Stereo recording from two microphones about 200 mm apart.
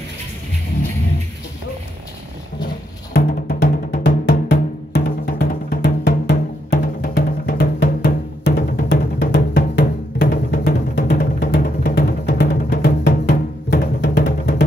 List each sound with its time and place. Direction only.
3.1 s music: 45° left (ahead or behind)
4.0 s music: 60° left (ahead or behind)
6.2 s music: 55° left (ahead or behind)